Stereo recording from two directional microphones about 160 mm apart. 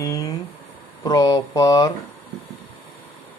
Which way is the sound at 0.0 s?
20° left (ahead or behind).